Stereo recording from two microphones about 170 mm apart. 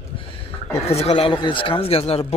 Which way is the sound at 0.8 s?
35° left (ahead or behind).